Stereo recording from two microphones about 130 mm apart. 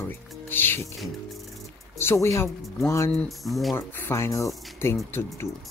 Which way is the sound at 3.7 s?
20° left (ahead or behind).